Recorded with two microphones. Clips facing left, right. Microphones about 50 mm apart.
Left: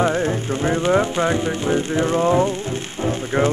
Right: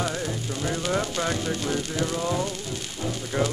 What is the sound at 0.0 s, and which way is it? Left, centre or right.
Speech, left.